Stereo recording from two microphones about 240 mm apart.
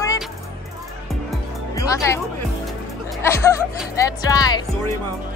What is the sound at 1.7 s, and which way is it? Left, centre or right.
Speech, centre.